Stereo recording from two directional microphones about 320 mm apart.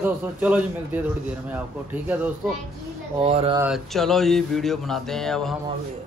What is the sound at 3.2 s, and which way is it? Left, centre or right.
Speech, centre.